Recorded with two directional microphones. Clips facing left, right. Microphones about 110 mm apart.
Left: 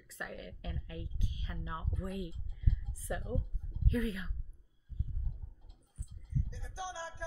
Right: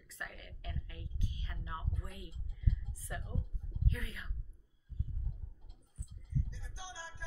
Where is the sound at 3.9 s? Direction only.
15° left (ahead or behind).